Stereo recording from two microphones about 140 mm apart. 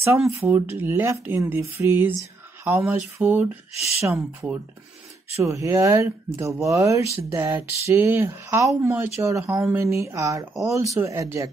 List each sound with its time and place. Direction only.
0.4 s speech: 20° right (ahead or behind)
3.7 s speech: 50° left (ahead or behind)
4.0 s speech: 20° right (ahead or behind)